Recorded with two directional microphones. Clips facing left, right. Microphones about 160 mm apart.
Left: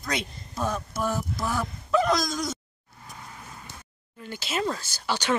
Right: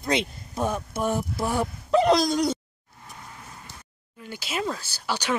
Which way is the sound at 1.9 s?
30° right (ahead or behind).